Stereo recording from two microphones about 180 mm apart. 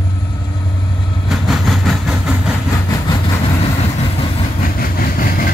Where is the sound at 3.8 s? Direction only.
30° left (ahead or behind).